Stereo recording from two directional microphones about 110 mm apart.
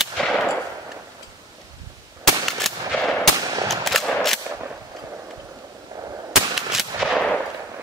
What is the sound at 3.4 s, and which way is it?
Gunshot, 35° right (ahead or behind).